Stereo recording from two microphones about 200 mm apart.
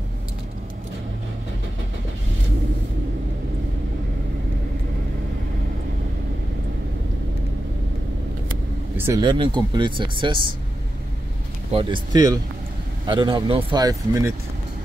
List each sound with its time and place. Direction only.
8.9 s a sound: 10° right (ahead or behind)
9.2 s speech: 25° right (ahead or behind)
11.7 s speech: 25° right (ahead or behind)